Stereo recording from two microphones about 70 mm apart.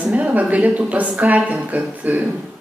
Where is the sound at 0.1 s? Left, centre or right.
Right.